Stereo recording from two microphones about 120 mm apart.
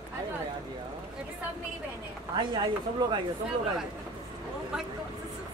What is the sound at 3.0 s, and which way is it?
Speech, 40° right (ahead or behind).